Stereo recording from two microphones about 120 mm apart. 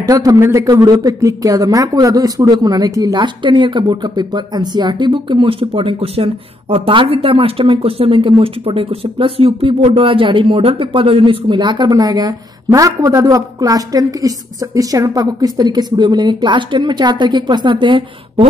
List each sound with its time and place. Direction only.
0.0 s a man's voice: 30° right (ahead or behind)